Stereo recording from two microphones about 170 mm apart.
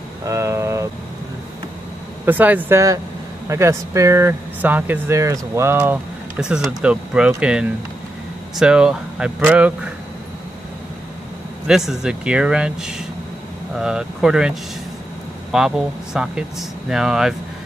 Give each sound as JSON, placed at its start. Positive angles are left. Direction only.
{"t": 0.2, "sound": "vehicle", "side_deg": -15}
{"t": 2.2, "sound": "speech", "side_deg": -10}
{"t": 11.6, "sound": "speech", "side_deg": -5}